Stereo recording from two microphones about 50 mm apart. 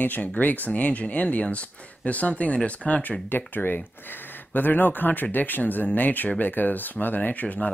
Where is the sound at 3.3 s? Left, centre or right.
Left.